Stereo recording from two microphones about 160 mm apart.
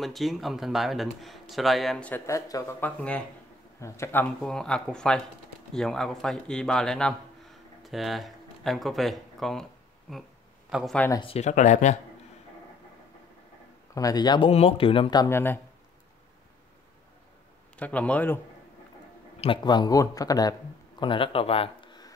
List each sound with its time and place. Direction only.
0.0 s speech: centre (ahead or behind); by 2.6 s 20° left (ahead or behind)
2.8 s speech: 10° left (ahead or behind)
4.4 s speech: 5° left (ahead or behind)
11.1 s speech: 40° left (ahead or behind)
13.9 s speech: 25° left (ahead or behind)
17.7 s speech: 10° left (ahead or behind)
19.4 s speech: 30° left (ahead or behind)